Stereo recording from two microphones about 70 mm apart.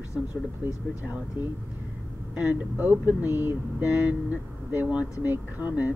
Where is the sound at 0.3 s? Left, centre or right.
Left.